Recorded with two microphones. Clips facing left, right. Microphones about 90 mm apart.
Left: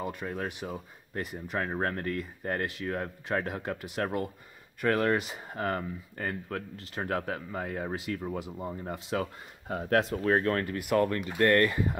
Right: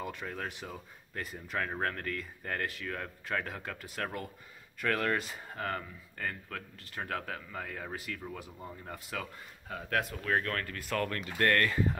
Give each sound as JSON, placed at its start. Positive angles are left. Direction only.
{"t": 0.2, "sound": "speech", "side_deg": 10}